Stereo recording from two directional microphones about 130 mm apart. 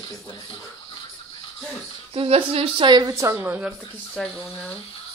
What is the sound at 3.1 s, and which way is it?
Speech, 20° right (ahead or behind).